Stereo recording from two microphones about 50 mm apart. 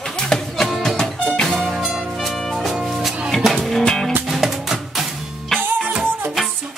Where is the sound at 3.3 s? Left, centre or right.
Centre.